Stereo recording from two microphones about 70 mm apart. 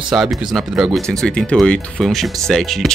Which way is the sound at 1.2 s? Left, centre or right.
Centre.